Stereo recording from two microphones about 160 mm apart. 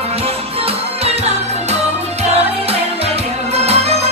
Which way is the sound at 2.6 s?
40° right (ahead or behind).